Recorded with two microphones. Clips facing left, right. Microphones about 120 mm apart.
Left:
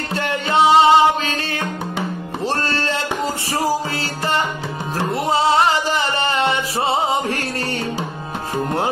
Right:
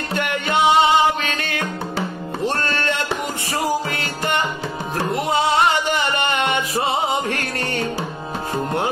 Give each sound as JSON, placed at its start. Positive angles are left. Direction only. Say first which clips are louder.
{"t": 0.1, "sound": "music", "louder": "left 2 dB", "side_deg": 30}
{"t": 5.1, "sound": "music", "louder": "left 2 dB", "side_deg": 30}